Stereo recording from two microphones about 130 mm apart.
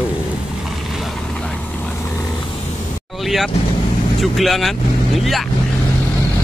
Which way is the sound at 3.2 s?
Centre (ahead or behind).